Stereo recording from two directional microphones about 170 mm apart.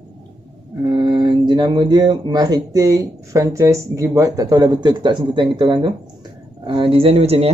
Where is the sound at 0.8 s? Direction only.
25° right (ahead or behind).